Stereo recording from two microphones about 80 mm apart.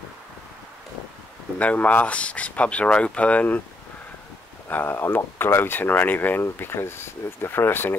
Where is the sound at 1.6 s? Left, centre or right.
Centre.